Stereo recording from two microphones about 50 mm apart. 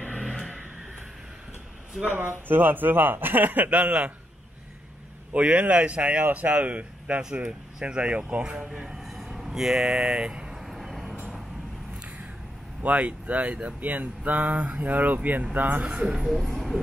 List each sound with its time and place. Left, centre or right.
0.2 s vehicle: centre
2.1 s speech: right
3.8 s speech: right
5.3 s speech: right
10.5 s vehicle: centre
12.8 s speech: right
16.3 s speech: centre